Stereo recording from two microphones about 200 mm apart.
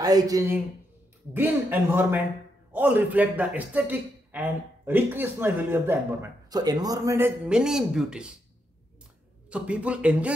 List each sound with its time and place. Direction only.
0.0 s a man's voice: 20° right (ahead or behind)
9.5 s a man's voice: 5° right (ahead or behind)